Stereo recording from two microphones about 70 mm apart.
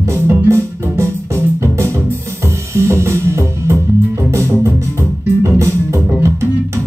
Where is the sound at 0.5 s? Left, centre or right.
Right.